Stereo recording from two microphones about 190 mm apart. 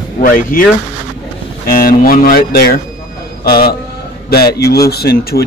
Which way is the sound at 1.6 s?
50° left (ahead or behind).